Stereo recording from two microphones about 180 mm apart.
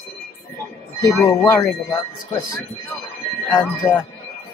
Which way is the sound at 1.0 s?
15° left (ahead or behind).